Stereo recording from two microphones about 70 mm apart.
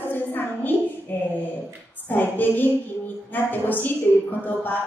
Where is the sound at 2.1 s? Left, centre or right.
Left.